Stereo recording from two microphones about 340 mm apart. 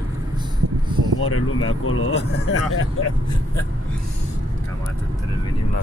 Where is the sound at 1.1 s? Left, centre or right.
Left.